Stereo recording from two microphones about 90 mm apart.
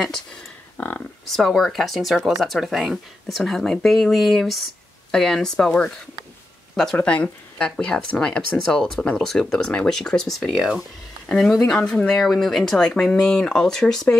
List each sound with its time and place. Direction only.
0.7 s speech: 15° left (ahead or behind)
1.3 s speech: 5° left (ahead or behind)
10.4 s speech: 5° right (ahead or behind)
11.2 s speech: 10° left (ahead or behind)